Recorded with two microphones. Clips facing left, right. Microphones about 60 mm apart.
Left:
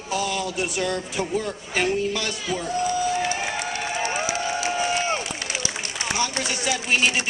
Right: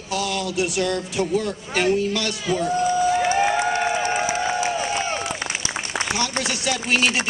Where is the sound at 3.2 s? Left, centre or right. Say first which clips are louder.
Right 7 dB; right.